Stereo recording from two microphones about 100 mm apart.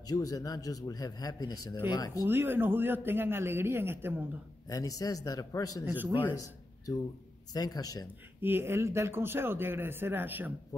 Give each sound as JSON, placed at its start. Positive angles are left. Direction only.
{"t": 0.0, "sound": "a man's voice", "side_deg": 40}
{"t": 2.2, "sound": "a man's voice", "side_deg": -20}
{"t": 4.6, "sound": "a man's voice", "side_deg": 35}
{"t": 7.5, "sound": "a man's voice", "side_deg": 40}
{"t": 8.4, "sound": "a man's voice", "side_deg": -20}
{"t": 10.7, "sound": "a man's voice", "side_deg": 35}